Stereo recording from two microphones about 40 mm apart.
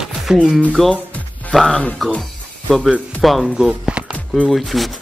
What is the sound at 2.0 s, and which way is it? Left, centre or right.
Speech, centre.